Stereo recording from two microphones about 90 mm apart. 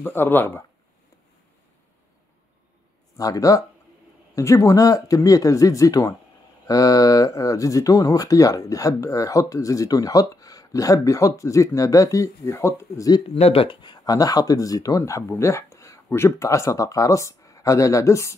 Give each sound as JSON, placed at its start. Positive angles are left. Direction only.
{"t": 0.0, "sound": "speech", "side_deg": 25}
{"t": 3.2, "sound": "speech", "side_deg": 40}
{"t": 13.3, "sound": "speech", "side_deg": 90}
{"t": 14.0, "sound": "speech", "side_deg": 45}